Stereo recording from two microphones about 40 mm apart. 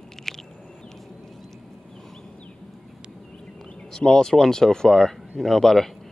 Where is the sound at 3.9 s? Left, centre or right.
Left.